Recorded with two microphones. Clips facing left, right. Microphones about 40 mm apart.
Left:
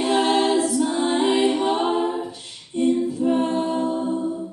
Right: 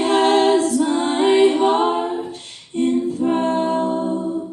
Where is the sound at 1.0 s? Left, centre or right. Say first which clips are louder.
Right 6 dB; right.